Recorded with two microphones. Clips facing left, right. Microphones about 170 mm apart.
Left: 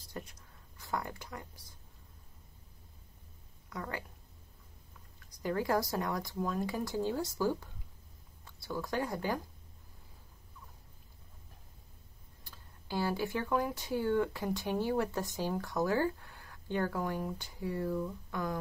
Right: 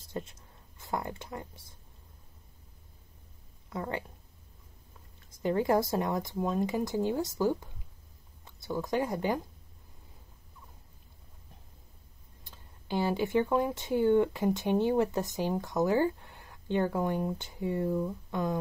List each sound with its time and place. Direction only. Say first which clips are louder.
0.0 s a sound: right 6 dB; 25° right (ahead or behind)
3.7 s speech: right 5 dB; 25° right (ahead or behind)
5.3 s speech: right 5 dB; 25° right (ahead or behind)
12.4 s speech: right 5 dB; 20° right (ahead or behind)